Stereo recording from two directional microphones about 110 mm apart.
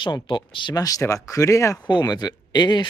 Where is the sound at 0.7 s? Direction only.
30° left (ahead or behind).